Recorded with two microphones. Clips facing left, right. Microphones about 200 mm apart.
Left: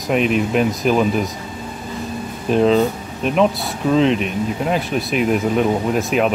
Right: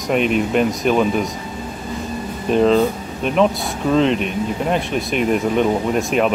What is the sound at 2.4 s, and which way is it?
Speech, centre (ahead or behind).